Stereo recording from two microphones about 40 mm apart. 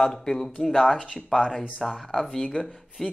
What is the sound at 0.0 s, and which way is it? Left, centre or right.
Speech, centre.